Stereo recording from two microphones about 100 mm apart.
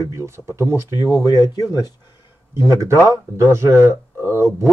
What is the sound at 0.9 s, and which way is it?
Speech, 40° left (ahead or behind).